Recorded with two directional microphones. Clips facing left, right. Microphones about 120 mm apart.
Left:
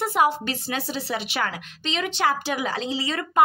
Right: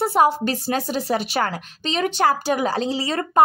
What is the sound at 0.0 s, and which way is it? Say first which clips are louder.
A woman's voice: right 4 dB; 35° right (ahead or behind).